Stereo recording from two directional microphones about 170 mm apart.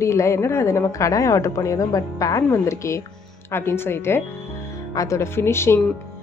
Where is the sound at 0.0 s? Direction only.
15° left (ahead or behind).